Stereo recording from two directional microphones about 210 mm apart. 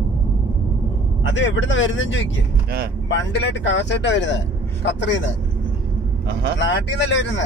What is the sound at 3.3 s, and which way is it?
Speech, 55° left (ahead or behind).